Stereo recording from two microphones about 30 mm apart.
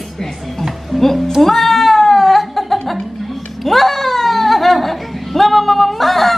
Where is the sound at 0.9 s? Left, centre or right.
Centre.